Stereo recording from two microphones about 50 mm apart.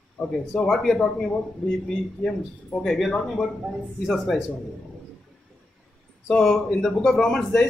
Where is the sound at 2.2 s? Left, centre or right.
Centre.